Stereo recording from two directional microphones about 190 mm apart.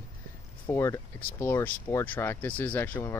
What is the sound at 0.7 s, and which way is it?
Speech, 15° left (ahead or behind).